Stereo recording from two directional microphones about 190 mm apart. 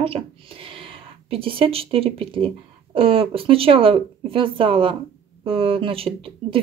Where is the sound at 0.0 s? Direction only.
30° right (ahead or behind).